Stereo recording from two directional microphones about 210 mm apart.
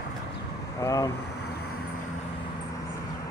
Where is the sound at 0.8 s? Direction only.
15° left (ahead or behind).